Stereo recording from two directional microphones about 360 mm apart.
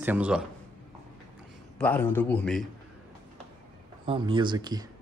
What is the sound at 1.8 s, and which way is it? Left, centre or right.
Speech, centre.